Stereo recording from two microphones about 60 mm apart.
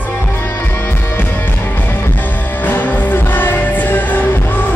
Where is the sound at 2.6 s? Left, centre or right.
Left.